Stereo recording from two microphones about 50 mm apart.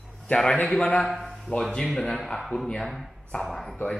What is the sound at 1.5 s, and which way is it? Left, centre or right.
Speech, left.